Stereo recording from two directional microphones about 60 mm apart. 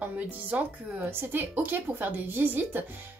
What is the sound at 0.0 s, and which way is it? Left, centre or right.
Speech, right.